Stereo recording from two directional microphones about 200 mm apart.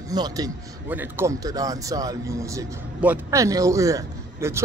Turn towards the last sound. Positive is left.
turn(degrees=-15)  # may be behind; listen again after turning